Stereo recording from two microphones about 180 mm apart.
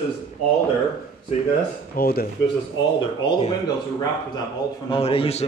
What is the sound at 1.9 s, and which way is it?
Speech, 55° left (ahead or behind).